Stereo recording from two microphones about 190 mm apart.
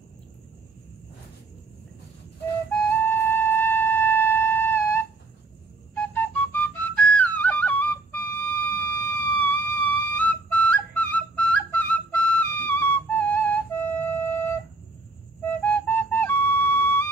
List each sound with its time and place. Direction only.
2.7 s flute: 10° left (ahead or behind)
8.6 s music: 10° left (ahead or behind)
15.6 s flute: 10° left (ahead or behind)